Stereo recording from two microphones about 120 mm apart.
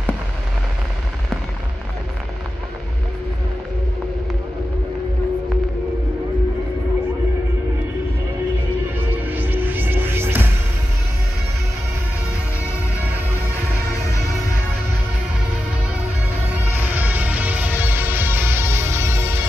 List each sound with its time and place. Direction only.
9.1 s music: 15° right (ahead or behind)
14.0 s music: 25° left (ahead or behind)
16.7 s music: 15° right (ahead or behind)